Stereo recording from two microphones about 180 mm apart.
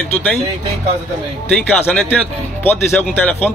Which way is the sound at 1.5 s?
5° left (ahead or behind).